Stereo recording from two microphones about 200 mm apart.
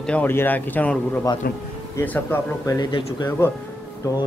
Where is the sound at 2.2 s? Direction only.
15° left (ahead or behind).